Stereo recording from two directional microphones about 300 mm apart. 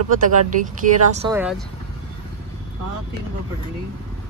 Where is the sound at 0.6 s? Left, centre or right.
Right.